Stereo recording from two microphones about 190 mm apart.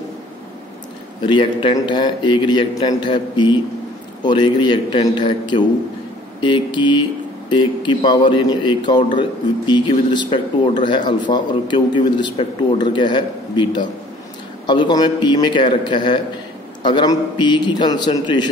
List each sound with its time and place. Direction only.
1.2 s speech: 25° left (ahead or behind)